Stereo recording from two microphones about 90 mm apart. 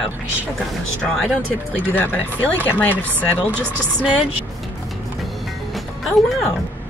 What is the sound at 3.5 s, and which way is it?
Speech, 15° right (ahead or behind).